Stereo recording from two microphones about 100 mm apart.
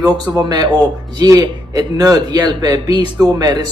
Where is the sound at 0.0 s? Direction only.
45° right (ahead or behind).